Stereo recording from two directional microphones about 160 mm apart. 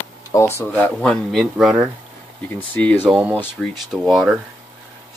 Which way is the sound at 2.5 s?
10° left (ahead or behind).